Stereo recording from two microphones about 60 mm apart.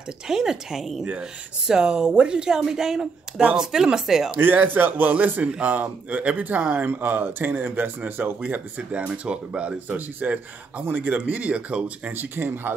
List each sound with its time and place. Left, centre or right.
0.3 s speech: centre
4.4 s speech: right
10.9 s speech: right
11.2 s speech: right
12.1 s speech: right